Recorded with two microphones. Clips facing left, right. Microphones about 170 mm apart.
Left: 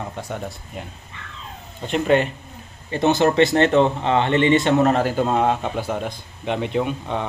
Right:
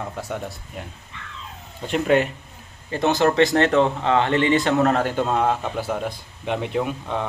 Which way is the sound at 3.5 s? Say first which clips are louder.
Left 2 dB; 15° left (ahead or behind).